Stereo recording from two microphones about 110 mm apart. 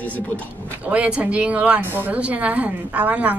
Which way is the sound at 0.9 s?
10° right (ahead or behind).